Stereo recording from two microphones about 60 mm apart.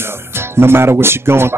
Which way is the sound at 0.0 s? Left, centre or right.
Right.